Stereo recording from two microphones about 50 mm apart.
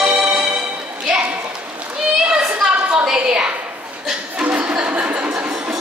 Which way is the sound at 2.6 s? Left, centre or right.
Right.